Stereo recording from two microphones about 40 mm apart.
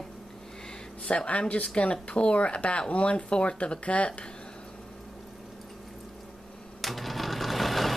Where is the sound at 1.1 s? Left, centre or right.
Left.